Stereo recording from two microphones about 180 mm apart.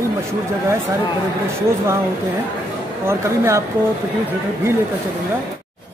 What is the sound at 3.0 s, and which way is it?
Speech, 15° right (ahead or behind).